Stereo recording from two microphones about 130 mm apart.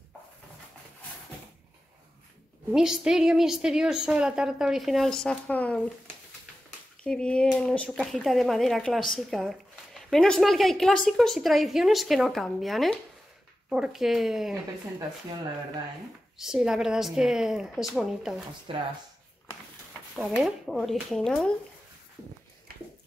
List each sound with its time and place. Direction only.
2.7 s a woman's voice: 5° right (ahead or behind); by 5.8 s 10° left (ahead or behind)
7.0 s a woman's voice: 10° left (ahead or behind)
16.3 s a woman's voice: 5° right (ahead or behind)
18.7 s speech: 45° right (ahead or behind)
20.2 s a woman's voice: 5° right (ahead or behind)